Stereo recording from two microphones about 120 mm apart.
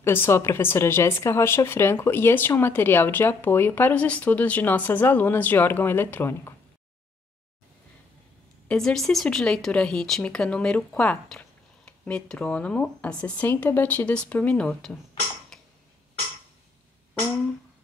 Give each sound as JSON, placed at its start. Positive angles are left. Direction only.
{"t": 0.0, "sound": "a woman's voice", "side_deg": 20}
{"t": 8.6, "sound": "speech", "side_deg": 5}
{"t": 15.5, "sound": "tick-tock", "side_deg": 5}